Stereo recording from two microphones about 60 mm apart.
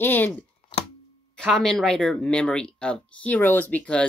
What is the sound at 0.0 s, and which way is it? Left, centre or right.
Speech, left.